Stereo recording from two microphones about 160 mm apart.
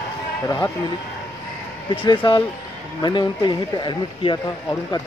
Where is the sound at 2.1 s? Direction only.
30° left (ahead or behind).